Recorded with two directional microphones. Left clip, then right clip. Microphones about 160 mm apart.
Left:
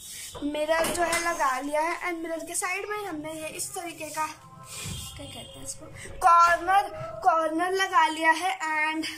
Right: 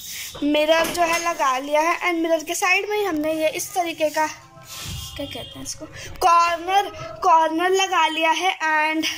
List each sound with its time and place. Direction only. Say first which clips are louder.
0.5 s a woman's voice: right 8 dB; 10° right (ahead or behind)
6.1 s a woman's voice: right 2 dB; 20° right (ahead or behind)